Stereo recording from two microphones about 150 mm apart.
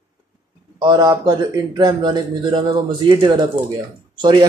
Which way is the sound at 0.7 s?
30° right (ahead or behind).